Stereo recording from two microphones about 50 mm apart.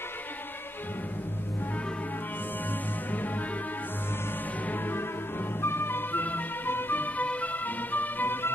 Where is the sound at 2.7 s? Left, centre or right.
Left.